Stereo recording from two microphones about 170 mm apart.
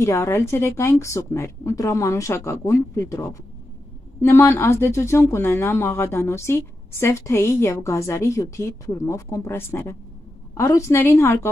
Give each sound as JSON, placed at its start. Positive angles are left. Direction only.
{"t": 0.0, "sound": "speech", "side_deg": 15}